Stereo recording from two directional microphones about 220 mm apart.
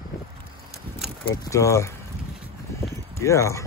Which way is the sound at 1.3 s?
15° left (ahead or behind).